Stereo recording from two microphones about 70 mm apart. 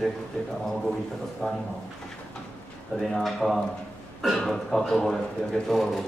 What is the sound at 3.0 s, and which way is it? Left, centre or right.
Speech, centre.